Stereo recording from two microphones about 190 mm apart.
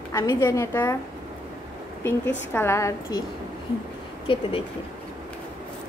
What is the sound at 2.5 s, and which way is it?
Speech, 15° left (ahead or behind).